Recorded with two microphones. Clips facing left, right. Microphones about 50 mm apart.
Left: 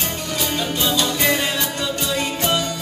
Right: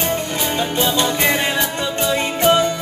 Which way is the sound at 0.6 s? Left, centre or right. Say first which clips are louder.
Right 4 dB; right.